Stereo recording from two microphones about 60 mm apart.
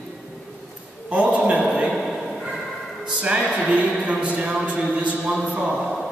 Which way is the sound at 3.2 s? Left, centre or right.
Centre.